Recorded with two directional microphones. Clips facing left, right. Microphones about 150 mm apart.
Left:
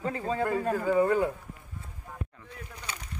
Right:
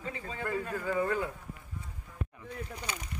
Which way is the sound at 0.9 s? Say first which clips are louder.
Left 6 dB; 25° left (ahead or behind).